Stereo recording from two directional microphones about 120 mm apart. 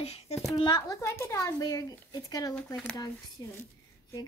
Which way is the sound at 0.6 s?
40° left (ahead or behind).